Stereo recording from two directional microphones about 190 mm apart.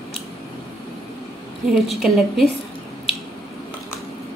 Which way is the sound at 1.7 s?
Centre (ahead or behind).